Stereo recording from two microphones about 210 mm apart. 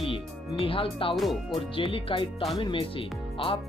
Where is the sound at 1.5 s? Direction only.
25° left (ahead or behind).